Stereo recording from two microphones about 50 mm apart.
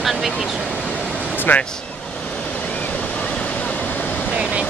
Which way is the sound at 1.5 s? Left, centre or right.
Left.